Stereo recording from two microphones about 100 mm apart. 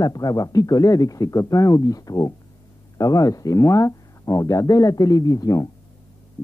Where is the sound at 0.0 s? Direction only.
40° left (ahead or behind).